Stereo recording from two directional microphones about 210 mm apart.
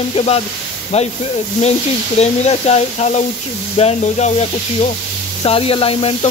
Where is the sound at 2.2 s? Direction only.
30° left (ahead or behind).